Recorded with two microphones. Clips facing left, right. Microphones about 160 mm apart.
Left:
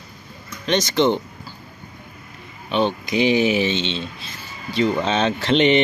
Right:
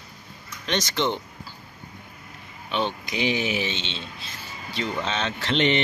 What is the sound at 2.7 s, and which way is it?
Speech, 35° left (ahead or behind).